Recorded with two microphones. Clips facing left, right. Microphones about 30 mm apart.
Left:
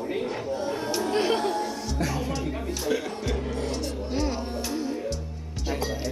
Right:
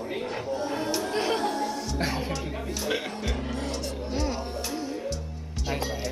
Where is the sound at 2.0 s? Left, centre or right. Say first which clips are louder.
Left 2 dB; right.